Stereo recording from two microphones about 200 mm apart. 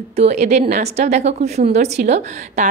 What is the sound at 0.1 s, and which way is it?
A woman's voice, 35° right (ahead or behind).